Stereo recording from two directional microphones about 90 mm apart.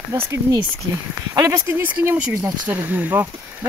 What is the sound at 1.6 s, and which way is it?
Speech, 25° right (ahead or behind).